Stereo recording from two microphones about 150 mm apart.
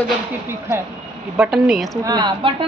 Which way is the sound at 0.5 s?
15° right (ahead or behind).